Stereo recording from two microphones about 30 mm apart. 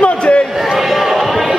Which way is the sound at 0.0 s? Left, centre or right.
Left.